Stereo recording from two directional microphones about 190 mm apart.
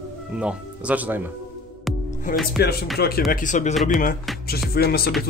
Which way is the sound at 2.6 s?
55° left (ahead or behind).